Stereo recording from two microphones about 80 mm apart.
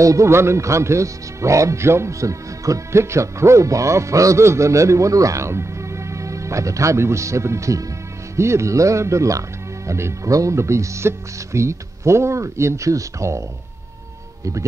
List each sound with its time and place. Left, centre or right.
0.0 s speech: right